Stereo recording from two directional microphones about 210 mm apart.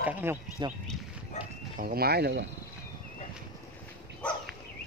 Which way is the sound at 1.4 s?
35° left (ahead or behind).